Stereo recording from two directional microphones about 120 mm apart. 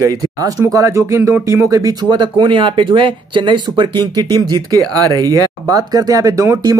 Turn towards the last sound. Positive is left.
turn(degrees=-25)  # may be behind; listen again after turning